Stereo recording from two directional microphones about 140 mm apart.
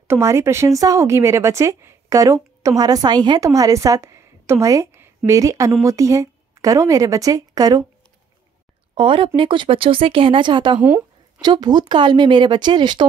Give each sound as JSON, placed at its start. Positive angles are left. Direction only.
{"t": 0.1, "sound": "speech", "side_deg": -20}
{"t": 8.9, "sound": "speech", "side_deg": -40}
{"t": 10.8, "sound": "a sound", "side_deg": -10}
{"t": 11.4, "sound": "speech", "side_deg": -30}